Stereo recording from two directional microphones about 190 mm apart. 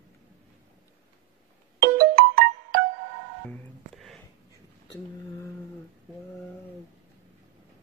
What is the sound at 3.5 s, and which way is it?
Telephone dialing, centre (ahead or behind).